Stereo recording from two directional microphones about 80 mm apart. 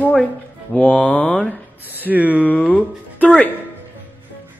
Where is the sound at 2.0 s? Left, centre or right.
Centre.